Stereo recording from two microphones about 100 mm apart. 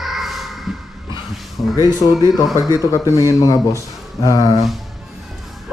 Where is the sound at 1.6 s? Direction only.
45° left (ahead or behind).